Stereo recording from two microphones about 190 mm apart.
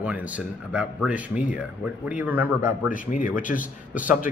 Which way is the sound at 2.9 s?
45° left (ahead or behind).